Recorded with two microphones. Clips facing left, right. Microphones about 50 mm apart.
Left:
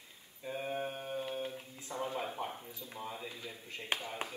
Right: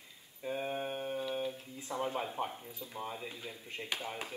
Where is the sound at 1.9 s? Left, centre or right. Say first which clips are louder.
Right 2 dB; right.